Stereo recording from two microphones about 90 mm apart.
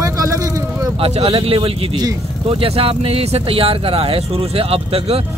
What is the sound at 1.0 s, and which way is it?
Speech, 90° right.